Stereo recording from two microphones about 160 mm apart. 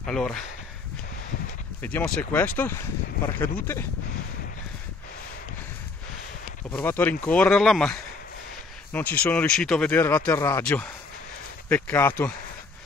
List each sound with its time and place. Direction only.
0.0 s speech: 5° left (ahead or behind)
1.8 s speech: 10° left (ahead or behind)
6.7 s speech: 10° left (ahead or behind)